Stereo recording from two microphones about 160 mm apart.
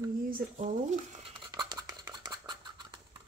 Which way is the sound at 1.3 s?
30° right (ahead or behind).